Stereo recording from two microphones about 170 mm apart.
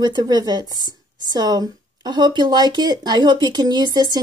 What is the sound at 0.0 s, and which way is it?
Speech, 25° right (ahead or behind).